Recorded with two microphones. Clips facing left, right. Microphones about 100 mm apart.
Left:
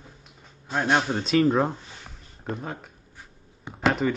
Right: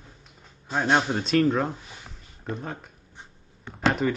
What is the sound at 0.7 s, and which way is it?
Speech, centre (ahead or behind).